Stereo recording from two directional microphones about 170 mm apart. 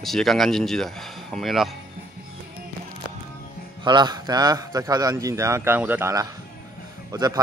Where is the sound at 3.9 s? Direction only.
25° right (ahead or behind).